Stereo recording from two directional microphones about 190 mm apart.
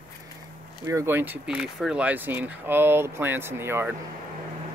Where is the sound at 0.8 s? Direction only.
15° right (ahead or behind).